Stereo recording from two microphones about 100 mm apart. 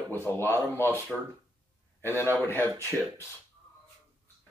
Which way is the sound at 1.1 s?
5° right (ahead or behind).